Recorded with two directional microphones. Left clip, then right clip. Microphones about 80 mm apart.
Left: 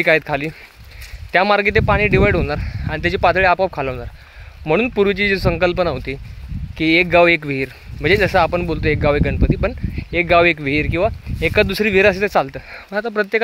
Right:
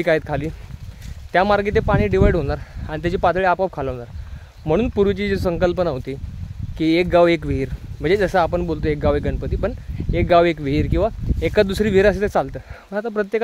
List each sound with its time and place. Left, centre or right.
0.3 s speech: centre
3.2 s speech: centre; by 7.4 s right
7.4 s speech: right
10.7 s speech: right
12.7 s speech: centre